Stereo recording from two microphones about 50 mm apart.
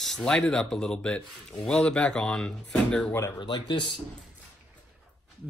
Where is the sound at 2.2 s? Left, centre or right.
Centre.